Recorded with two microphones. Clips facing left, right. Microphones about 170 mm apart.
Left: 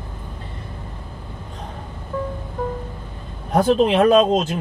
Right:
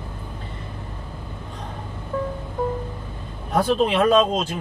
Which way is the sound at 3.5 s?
45° left (ahead or behind).